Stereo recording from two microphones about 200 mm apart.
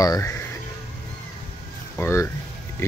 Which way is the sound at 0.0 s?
15° left (ahead or behind).